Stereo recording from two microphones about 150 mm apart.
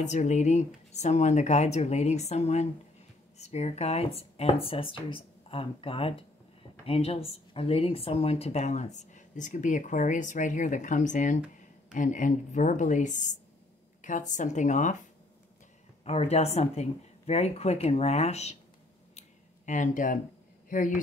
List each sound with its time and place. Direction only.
0.0 s a woman's voice: 50° left (ahead or behind)
16.0 s speech: 45° left (ahead or behind)
19.1 s a sound: 55° left (ahead or behind)
20.7 s a woman's voice: 60° left (ahead or behind)